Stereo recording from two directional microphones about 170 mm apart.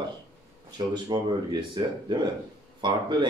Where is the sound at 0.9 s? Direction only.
25° right (ahead or behind).